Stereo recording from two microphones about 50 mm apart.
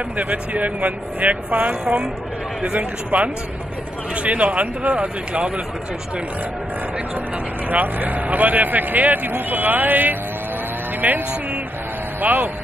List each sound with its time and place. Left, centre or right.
0.2 s speech: right
7.7 s speech: right
11.0 s music: right
12.2 s speech: right